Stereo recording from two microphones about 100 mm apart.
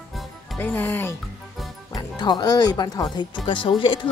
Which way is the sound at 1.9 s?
45° left (ahead or behind).